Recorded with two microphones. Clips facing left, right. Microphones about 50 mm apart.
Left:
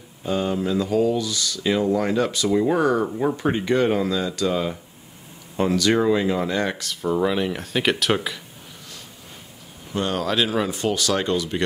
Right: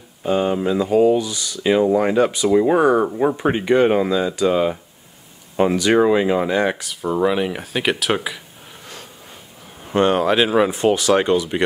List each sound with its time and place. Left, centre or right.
0.2 s speech: right; by 8.4 s centre
9.8 s a sound: right
10.1 s speech: right